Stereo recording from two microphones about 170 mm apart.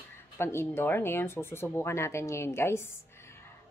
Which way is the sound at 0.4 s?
15° left (ahead or behind).